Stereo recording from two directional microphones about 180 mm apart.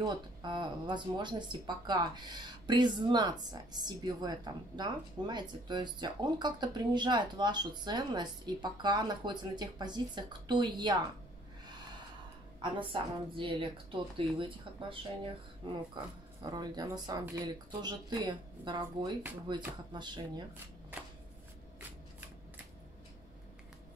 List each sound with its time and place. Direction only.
0.0 s speech: 25° right (ahead or behind)
12.6 s speech: 30° right (ahead or behind)